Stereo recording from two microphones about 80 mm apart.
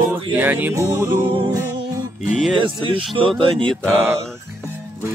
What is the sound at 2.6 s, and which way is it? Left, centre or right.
Speech, right.